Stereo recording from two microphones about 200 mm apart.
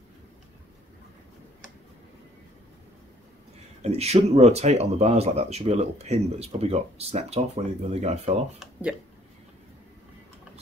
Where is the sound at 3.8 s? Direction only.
30° right (ahead or behind).